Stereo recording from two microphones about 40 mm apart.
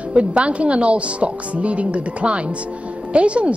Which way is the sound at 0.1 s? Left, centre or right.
Right.